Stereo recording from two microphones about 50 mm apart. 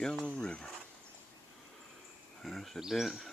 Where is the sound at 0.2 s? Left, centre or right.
Centre.